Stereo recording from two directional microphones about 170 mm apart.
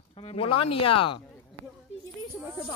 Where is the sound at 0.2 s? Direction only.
35° left (ahead or behind).